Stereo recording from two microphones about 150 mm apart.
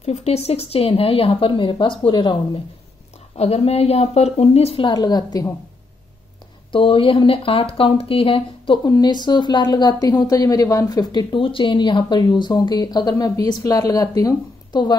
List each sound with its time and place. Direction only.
0.0 s a woman's voice: 45° left (ahead or behind)
3.3 s a woman's voice: 45° left (ahead or behind); by 5.5 s 25° left (ahead or behind)
6.7 s a woman's voice: 35° left (ahead or behind)